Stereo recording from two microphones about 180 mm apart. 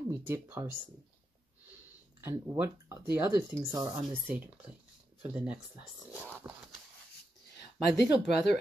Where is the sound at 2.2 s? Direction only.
15° right (ahead or behind).